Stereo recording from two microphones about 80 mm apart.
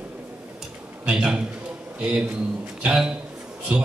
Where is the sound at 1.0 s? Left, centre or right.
Centre.